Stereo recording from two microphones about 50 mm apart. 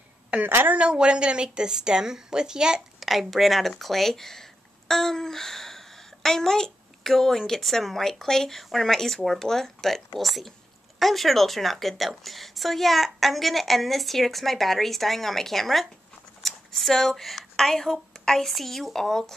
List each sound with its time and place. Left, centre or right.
0.7 s a woman's voice: right
3.0 s a woman's voice: centre